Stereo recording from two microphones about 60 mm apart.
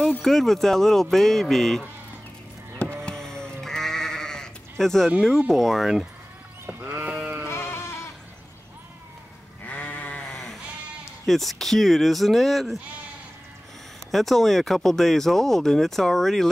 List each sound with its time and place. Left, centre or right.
0.2 s speech: centre
3.0 s sheep: centre
5.5 s speech: centre
6.6 s sheep: right
7.1 s sheep: right
7.4 s sheep: left
9.7 s sheep: left
10.2 s sheep: centre
11.2 s speech: centre
14.1 s speech: centre